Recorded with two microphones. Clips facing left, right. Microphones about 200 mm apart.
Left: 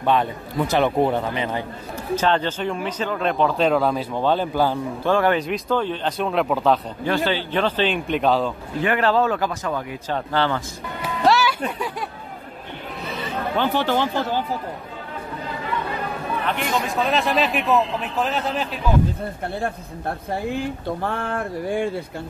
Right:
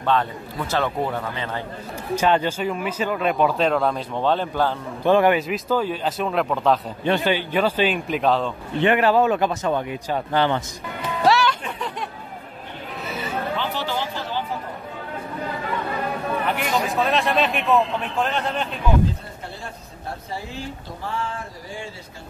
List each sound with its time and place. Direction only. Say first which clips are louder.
0.0 s a man's voice: left 2 dB; 15° left (ahead or behind)
2.1 s speech: right 1 dB; 10° right (ahead or behind)
3.5 s a man's voice: left 2 dB; centre (ahead or behind)
5.0 s speech: right 3 dB; 15° right (ahead or behind)
5.5 s a man's voice: even; 5° right (ahead or behind)
7.1 s speech: right 1 dB; 15° right (ahead or behind); by 8.5 s centre (ahead or behind)
8.7 s speech: right 2 dB; 25° right (ahead or behind)
10.0 s speech: even; 15° right (ahead or behind)
11.2 s music: left 1 dB; 5° left (ahead or behind)
13.6 s speech: left 6 dB; 55° left (ahead or behind)
16.4 s a man's voice: left 1 dB; 5° right (ahead or behind)
19.4 s speech: left 9 dB; 55° left (ahead or behind)